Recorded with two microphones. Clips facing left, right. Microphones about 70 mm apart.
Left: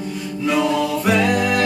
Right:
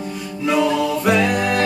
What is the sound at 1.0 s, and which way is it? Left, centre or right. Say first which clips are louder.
Music: even; centre.